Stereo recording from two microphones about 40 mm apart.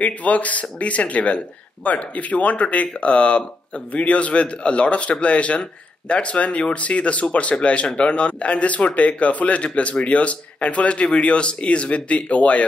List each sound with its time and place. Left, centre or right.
0.0 s speech: left